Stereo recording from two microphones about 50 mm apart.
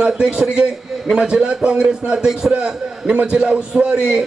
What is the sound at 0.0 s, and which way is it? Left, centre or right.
A man's voice, centre.